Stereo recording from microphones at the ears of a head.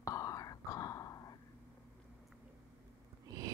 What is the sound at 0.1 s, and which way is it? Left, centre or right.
Whispering, left.